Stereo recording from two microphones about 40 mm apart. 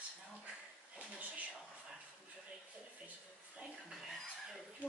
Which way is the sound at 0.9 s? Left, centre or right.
Right.